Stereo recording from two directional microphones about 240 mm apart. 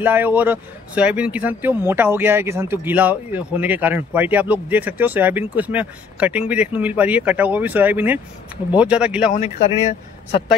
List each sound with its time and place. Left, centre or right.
0.0 s speech: centre
9.3 s speech: left